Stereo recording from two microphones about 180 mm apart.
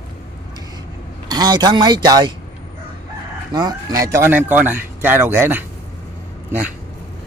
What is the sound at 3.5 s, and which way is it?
Speech, 20° right (ahead or behind).